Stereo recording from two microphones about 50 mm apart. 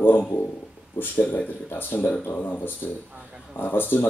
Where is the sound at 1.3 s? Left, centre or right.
Left.